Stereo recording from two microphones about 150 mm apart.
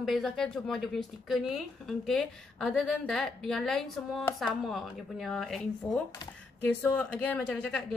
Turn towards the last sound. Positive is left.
turn(degrees=5)  # may be behind; listen again after turning